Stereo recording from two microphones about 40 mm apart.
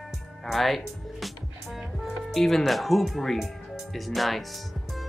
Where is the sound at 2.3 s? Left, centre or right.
Centre.